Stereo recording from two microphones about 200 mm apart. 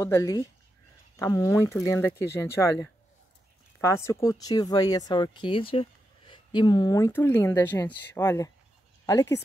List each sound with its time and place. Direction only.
0.0 s speech: 15° left (ahead or behind)